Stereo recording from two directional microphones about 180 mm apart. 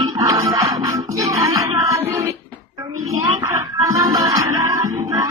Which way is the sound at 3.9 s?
20° right (ahead or behind).